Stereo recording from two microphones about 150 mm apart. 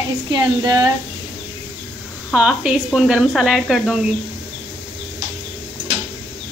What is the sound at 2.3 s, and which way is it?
A woman's voice, 5° right (ahead or behind).